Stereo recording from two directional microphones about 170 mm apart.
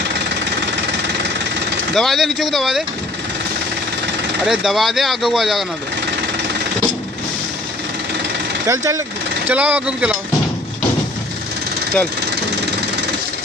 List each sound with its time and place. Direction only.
2.0 s speech: centre (ahead or behind)
4.5 s speech: centre (ahead or behind)
8.6 s speech: 20° right (ahead or behind)
9.5 s speech: 10° right (ahead or behind)